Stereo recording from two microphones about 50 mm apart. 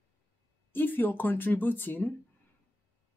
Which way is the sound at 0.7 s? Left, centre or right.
Left.